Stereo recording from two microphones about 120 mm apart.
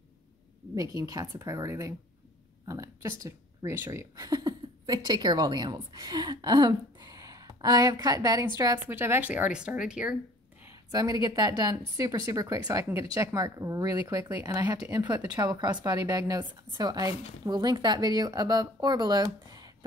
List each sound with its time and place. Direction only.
0.7 s a woman's voice: 30° right (ahead or behind)
8.8 s speech: 20° right (ahead or behind)
10.9 s a woman's voice: 30° right (ahead or behind)